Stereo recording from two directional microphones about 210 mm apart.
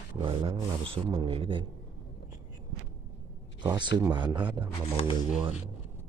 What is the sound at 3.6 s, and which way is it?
Speech, 20° right (ahead or behind).